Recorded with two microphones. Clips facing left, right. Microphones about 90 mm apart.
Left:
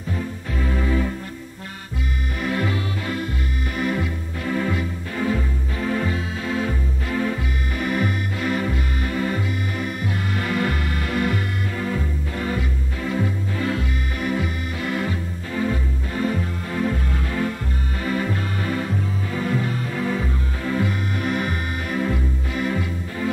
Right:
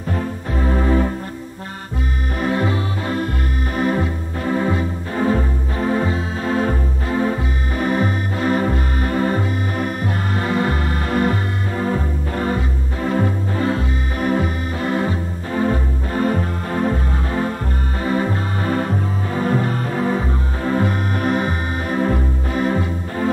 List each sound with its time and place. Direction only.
0.6 s music: 40° right (ahead or behind)
2.4 s music: 30° right (ahead or behind)
13.7 s organ: 40° right (ahead or behind)
18.0 s music: 35° right (ahead or behind)